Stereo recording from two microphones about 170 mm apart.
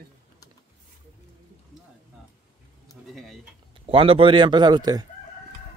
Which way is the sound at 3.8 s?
35° right (ahead or behind).